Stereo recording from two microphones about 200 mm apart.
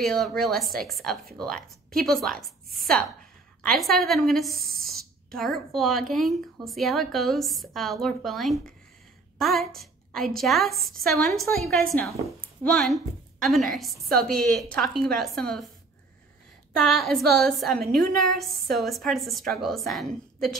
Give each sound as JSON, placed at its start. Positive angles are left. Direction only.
{"t": 0.0, "sound": "a woman's voice", "side_deg": 0}
{"t": 4.6, "sound": "speech", "side_deg": -45}
{"t": 4.9, "sound": "a woman's voice", "side_deg": 0}
{"t": 16.7, "sound": "a woman's voice", "side_deg": 0}